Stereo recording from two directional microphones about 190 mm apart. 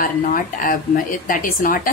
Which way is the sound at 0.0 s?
45° left (ahead or behind).